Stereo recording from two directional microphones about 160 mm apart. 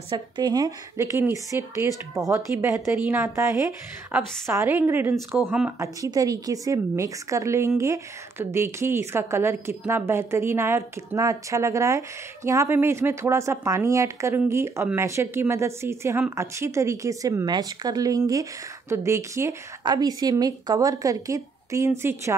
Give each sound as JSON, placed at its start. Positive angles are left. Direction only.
{"t": 0.4, "sound": "a woman's voice", "side_deg": -25}
{"t": 5.8, "sound": "a woman's voice", "side_deg": -20}